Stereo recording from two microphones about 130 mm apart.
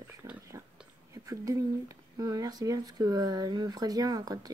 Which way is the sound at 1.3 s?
25° right (ahead or behind).